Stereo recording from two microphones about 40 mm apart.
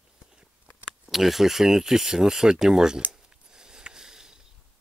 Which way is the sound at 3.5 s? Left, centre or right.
Centre.